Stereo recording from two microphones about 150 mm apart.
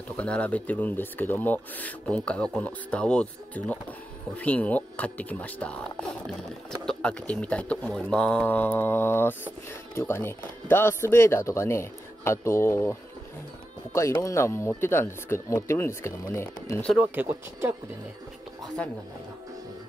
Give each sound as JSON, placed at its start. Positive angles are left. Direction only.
{"t": 0.1, "sound": "speech", "side_deg": 10}
{"t": 13.9, "sound": "speech", "side_deg": 20}
{"t": 16.9, "sound": "speech", "side_deg": -10}